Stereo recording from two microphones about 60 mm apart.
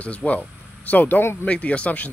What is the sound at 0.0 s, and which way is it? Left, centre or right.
Speech, left.